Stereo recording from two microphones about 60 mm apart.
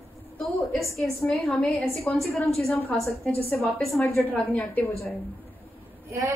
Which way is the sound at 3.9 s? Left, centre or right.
Left.